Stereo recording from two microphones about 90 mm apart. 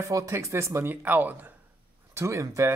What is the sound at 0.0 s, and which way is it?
Speech, 35° right (ahead or behind).